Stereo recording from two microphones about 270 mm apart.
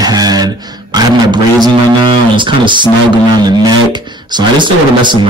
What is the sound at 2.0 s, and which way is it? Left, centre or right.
Speech, centre.